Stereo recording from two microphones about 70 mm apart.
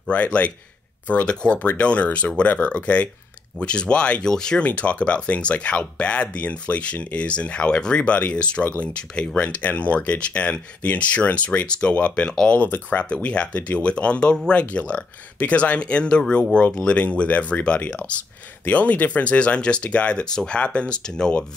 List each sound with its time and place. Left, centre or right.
0.1 s speech: left